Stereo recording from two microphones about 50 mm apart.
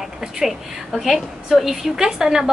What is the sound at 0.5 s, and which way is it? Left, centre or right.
A woman's voice, centre.